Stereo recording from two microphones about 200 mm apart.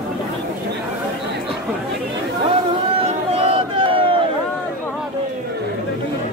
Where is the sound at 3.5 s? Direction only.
25° right (ahead or behind).